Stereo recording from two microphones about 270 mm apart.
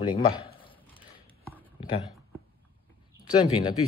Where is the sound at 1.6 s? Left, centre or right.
Centre.